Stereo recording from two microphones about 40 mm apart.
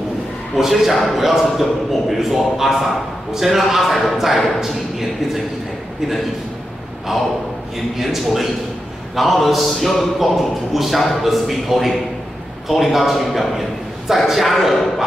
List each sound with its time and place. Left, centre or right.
0.6 s a man's voice: centre
8.0 s a man's voice: centre